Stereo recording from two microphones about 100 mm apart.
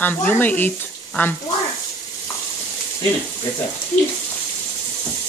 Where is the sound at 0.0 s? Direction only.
15° left (ahead or behind).